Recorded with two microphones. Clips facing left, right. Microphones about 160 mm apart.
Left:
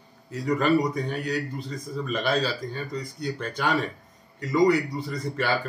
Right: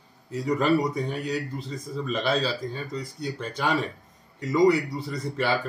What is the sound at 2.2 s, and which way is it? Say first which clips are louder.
Speech: even; 30° right (ahead or behind).